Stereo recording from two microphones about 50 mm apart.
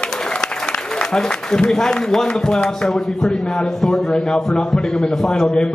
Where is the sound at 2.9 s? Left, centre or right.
Centre.